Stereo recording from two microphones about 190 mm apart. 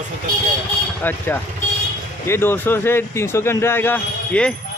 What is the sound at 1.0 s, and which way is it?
Speech, 10° left (ahead or behind).